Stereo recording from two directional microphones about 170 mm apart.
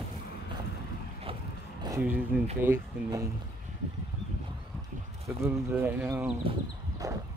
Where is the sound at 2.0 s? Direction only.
10° right (ahead or behind).